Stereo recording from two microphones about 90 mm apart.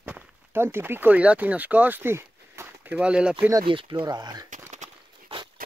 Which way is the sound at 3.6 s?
70° right (ahead or behind).